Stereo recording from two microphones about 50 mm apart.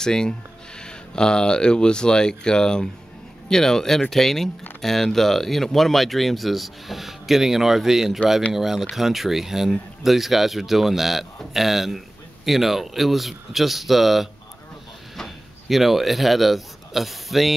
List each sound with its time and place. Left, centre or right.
0.0 s speech: centre